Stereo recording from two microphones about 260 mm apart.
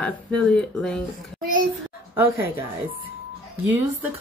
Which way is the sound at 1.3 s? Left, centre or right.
Right.